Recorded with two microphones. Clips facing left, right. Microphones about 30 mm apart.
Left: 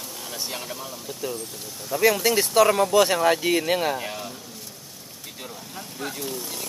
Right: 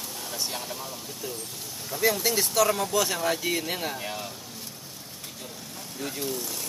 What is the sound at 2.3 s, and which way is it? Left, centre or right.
Speech, left.